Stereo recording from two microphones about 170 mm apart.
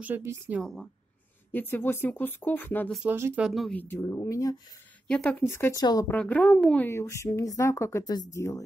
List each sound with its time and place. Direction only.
0.0 s speech: 15° right (ahead or behind)
0.6 s speech: centre (ahead or behind)
1.5 s a woman's voice: 10° left (ahead or behind)
3.0 s speech: 15° right (ahead or behind)
3.4 s speech: centre (ahead or behind)
3.8 s a woman's voice: 15° left (ahead or behind)
5.0 s a woman's voice: 5° left (ahead or behind); by 6.0 s 20° left (ahead or behind)
6.0 s a woman's voice: 10° left (ahead or behind)